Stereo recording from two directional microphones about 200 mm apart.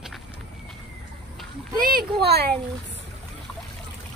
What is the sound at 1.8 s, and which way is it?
Speech, 45° right (ahead or behind).